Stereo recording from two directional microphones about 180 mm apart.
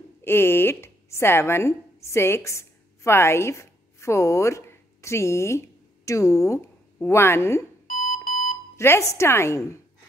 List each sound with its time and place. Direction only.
0.2 s a woman's voice: 10° left (ahead or behind)
7.8 s alarm clock: 50° left (ahead or behind)
8.7 s speech: 15° left (ahead or behind)